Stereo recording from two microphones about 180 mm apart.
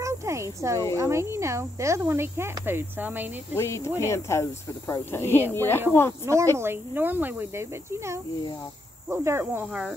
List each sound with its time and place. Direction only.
0.0 s a sound: 15° right (ahead or behind)
0.9 s cricket: 15° right (ahead or behind)
3.5 s speech: 15° left (ahead or behind)
6.5 s cricket: 15° right (ahead or behind)